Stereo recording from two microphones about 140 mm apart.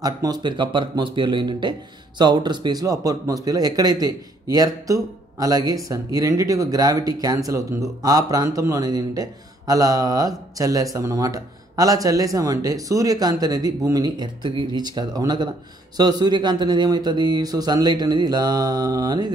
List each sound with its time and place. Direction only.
0.0 s a man's voice: 30° right (ahead or behind)